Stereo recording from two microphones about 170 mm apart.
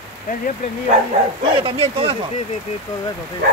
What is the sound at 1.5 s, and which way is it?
Speech, 30° right (ahead or behind).